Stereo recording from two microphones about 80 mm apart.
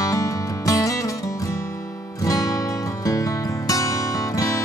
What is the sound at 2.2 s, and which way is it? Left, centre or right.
Music, left.